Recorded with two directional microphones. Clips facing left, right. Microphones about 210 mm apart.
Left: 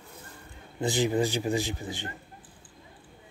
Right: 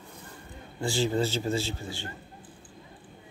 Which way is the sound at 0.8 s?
20° left (ahead or behind).